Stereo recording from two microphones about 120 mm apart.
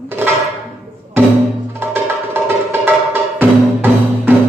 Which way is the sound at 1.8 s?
20° right (ahead or behind).